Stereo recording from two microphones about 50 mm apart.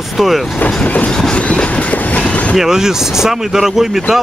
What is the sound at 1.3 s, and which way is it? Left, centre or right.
Train, left.